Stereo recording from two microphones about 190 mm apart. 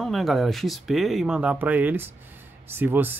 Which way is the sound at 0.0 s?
Centre (ahead or behind).